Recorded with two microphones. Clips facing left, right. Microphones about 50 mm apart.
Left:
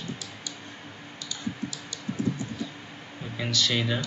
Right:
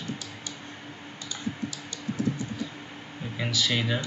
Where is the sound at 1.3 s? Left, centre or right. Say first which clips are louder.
Even; right.